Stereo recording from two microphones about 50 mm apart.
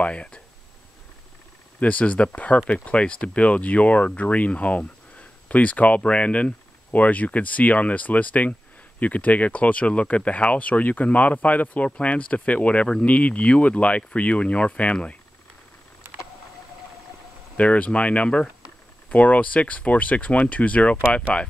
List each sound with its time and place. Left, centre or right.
0.0 s speech: left
1.8 s speech: left
17.6 s speech: left